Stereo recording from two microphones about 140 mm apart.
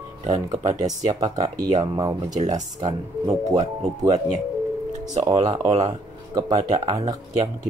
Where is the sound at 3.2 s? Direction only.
25° right (ahead or behind).